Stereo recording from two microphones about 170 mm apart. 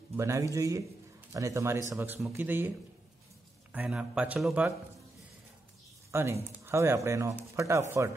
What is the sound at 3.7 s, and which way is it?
Speech, 5° right (ahead or behind).